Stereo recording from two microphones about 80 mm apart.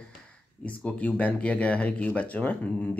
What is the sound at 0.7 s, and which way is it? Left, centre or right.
Speech, centre.